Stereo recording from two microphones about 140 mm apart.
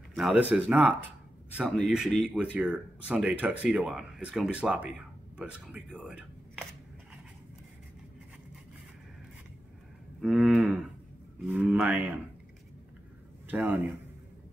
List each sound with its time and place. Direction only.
0.1 s speech: centre (ahead or behind)
1.8 s speech: centre (ahead or behind)
10.2 s cattle: 5° right (ahead or behind)
11.4 s speech: 10° right (ahead or behind)
13.5 s speech: 15° right (ahead or behind)